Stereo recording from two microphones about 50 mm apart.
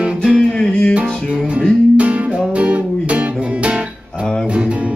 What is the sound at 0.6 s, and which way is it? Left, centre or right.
Music, centre.